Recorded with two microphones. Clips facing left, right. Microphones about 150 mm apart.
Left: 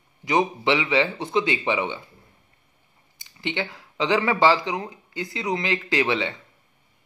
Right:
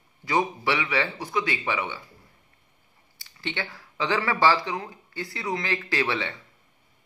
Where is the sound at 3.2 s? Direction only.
20° left (ahead or behind).